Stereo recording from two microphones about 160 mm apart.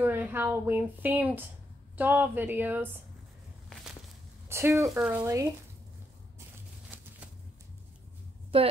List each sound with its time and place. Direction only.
0.0 s speech: 10° right (ahead or behind)
4.5 s speech: 15° right (ahead or behind)
4.8 s speech: 5° right (ahead or behind)
5.2 s speech: 20° right (ahead or behind)
6.9 s a sound: 10° right (ahead or behind)
8.5 s a woman's voice: 35° right (ahead or behind)